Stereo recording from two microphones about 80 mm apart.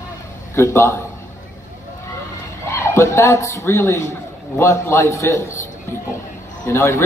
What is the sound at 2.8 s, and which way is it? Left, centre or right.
Speech, left.